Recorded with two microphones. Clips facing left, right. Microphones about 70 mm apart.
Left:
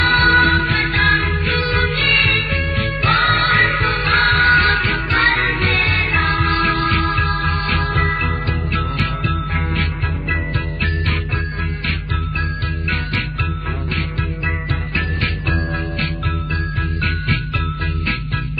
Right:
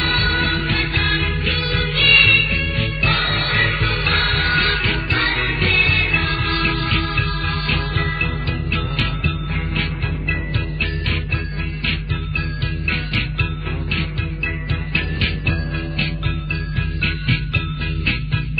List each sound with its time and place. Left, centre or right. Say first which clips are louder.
0.3 s music: left 7 dB; left
9.3 s music: left 3 dB; left
14.7 s music: left 2 dB; left